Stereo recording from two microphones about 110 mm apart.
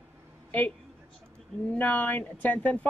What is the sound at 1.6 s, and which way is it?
Speech, 15° left (ahead or behind).